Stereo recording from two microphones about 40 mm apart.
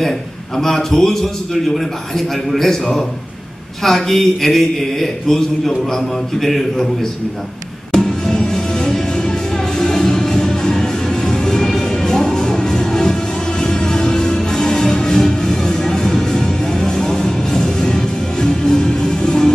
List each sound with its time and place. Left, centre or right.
0.6 s a man's voice: centre
3.8 s a man's voice: centre
7.9 s music: centre